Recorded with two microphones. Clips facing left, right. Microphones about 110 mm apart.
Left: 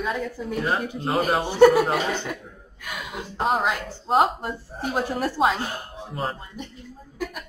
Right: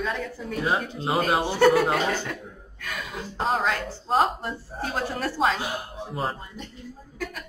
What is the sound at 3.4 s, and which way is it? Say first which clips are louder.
Speech: left 2 dB; 15° left (ahead or behind).